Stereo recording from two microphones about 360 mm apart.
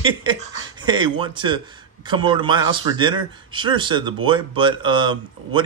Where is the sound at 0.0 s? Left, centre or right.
Centre.